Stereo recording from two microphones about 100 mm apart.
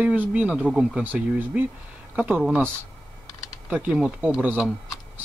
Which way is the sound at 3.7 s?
10° right (ahead or behind).